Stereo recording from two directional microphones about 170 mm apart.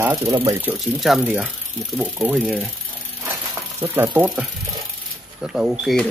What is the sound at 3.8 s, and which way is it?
Speech, 15° right (ahead or behind).